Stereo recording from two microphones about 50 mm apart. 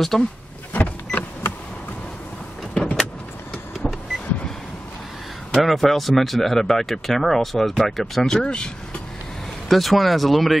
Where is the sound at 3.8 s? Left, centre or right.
Centre.